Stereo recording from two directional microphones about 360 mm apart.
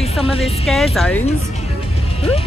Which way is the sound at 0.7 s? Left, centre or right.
Centre.